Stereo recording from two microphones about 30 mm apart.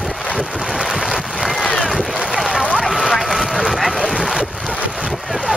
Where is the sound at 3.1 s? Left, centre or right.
Centre.